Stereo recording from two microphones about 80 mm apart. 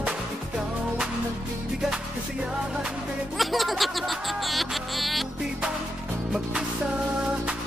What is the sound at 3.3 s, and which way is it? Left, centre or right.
Music, centre.